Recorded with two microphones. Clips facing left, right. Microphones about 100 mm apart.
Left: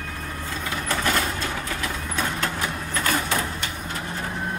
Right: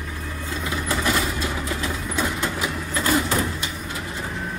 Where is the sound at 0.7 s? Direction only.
15° right (ahead or behind).